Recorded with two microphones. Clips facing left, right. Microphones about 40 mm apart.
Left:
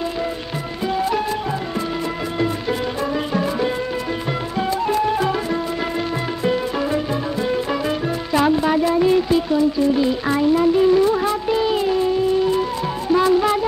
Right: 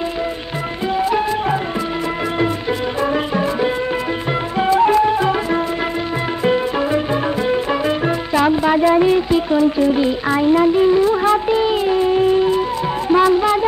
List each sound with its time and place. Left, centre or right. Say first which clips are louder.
0.9 s music: right 4 dB; centre
3.1 s music: right 3 dB; centre
4.6 s music: right 8 dB; right
4.9 s music: right 4 dB; centre
8.3 s music: even; centre
8.6 s a sound: right 4 dB; right
9.0 s music: right 1 dB; centre
9.5 s music: right 3 dB; right
10.2 s speech: right 3 dB; centre
11.2 s music: right 4 dB; right
13.1 s music: right 2 dB; centre